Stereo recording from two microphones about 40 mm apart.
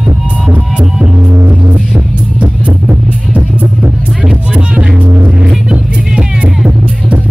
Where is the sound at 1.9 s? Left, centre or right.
Right.